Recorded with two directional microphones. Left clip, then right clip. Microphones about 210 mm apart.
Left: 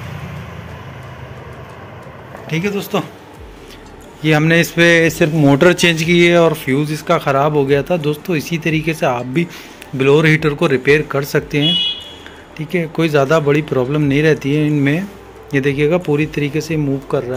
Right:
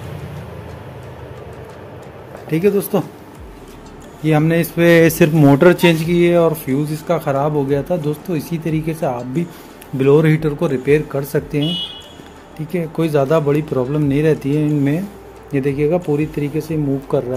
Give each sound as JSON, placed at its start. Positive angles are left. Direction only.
{"t": 2.9, "sound": "speech", "side_deg": -30}
{"t": 4.2, "sound": "speech", "side_deg": -5}
{"t": 9.9, "sound": "speech", "side_deg": -20}
{"t": 10.3, "sound": "speech", "side_deg": 0}
{"t": 17.1, "sound": "speech", "side_deg": -15}